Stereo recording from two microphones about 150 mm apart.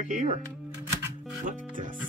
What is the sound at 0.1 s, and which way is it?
Speech, 55° right (ahead or behind).